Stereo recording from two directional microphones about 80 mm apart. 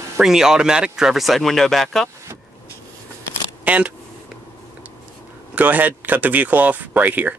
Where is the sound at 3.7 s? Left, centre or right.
Centre.